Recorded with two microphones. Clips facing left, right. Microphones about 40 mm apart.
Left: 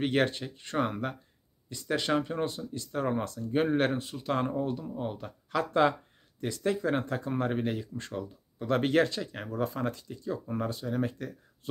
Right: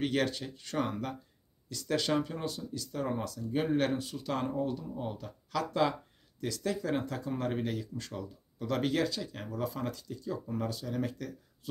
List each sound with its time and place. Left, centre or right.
0.0 s speech: left
9.3 s speech: left